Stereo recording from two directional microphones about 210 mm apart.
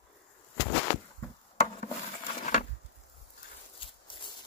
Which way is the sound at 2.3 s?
35° left (ahead or behind).